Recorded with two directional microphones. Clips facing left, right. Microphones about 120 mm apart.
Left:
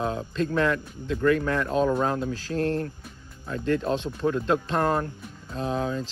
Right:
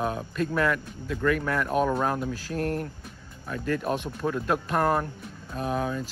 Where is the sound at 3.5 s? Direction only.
25° left (ahead or behind).